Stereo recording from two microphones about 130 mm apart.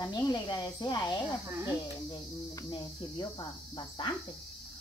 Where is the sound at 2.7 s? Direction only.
35° left (ahead or behind).